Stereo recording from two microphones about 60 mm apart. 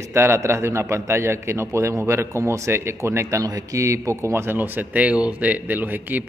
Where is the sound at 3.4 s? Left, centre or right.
Right.